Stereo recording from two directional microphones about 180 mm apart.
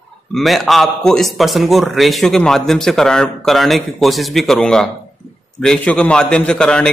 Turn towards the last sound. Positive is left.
turn(degrees=5)  # may be behind; listen again after turning